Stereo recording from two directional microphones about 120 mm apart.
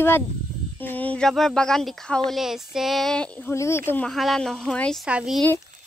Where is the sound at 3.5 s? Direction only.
20° left (ahead or behind).